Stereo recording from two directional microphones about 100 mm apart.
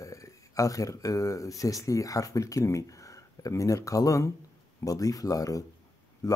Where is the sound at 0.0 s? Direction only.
35° left (ahead or behind).